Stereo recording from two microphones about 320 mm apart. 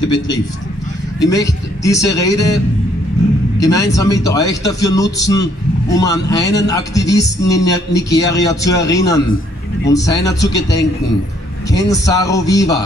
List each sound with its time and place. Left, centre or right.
0.0 s a man's voice: centre
3.5 s a man's voice: centre